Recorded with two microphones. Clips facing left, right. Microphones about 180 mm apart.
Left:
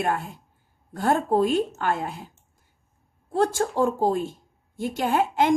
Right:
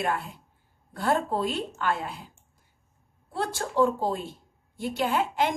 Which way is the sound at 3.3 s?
45° left (ahead or behind).